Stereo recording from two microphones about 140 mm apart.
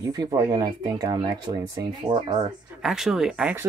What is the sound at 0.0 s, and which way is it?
Speech, 25° right (ahead or behind).